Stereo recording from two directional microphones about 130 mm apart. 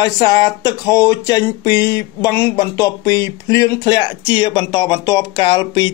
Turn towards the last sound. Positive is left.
turn(degrees=35)  # may be behind; listen again after turning